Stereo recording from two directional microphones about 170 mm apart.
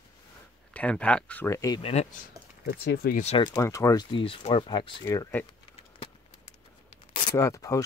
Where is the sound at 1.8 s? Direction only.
35° left (ahead or behind).